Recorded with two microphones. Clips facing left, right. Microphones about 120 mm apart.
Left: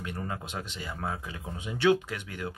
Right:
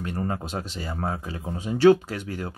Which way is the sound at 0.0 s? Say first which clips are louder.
Right 7 dB; 40° right (ahead or behind).